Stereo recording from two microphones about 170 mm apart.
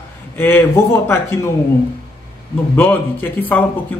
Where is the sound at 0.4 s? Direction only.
15° left (ahead or behind).